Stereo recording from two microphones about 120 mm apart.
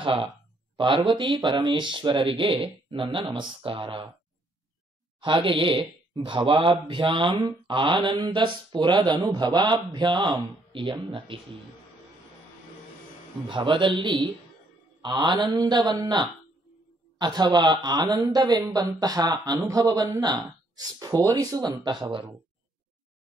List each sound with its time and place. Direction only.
0.0 s speech: 45° right (ahead or behind)
5.2 s speech: 45° right (ahead or behind)
13.5 s speech: 40° right (ahead or behind)